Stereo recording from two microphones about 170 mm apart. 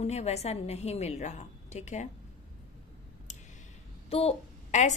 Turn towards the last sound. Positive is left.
turn(degrees=45)  # may be behind; listen again after turning